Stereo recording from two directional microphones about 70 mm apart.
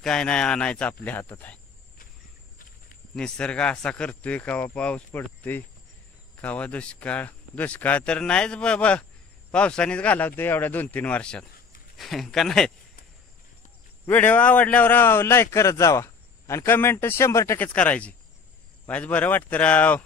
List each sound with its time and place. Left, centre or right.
0.0 s speech: centre
3.2 s speech: centre
5.1 s a man's voice: left
12.0 s speech: centre
14.0 s a man's voice: left
17.6 s a man's voice: left